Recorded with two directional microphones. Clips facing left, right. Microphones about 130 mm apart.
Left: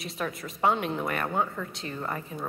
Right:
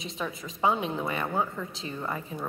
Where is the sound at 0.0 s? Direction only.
Centre (ahead or behind).